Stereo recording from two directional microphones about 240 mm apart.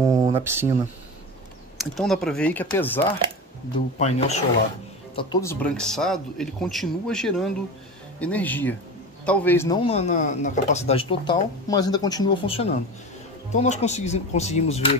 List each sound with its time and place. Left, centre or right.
0.0 s a sound: centre
1.8 s speech: centre
3.7 s speech: left
5.1 s a man's voice: centre
9.8 s speech: left